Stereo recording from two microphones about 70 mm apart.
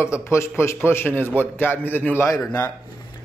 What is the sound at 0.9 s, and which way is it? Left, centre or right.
A man's voice, left.